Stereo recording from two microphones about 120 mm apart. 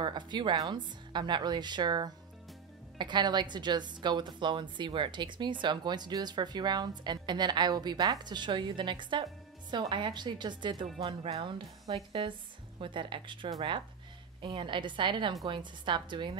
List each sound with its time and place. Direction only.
0.0 s a woman's voice: 40° right (ahead or behind)
11.0 s a woman's voice: 55° right (ahead or behind)